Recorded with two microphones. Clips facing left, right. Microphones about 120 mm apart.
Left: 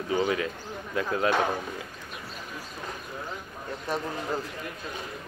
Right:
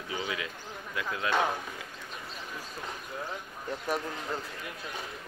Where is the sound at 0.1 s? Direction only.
45° left (ahead or behind).